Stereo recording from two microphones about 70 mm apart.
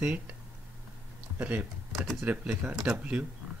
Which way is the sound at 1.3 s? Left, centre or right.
Right.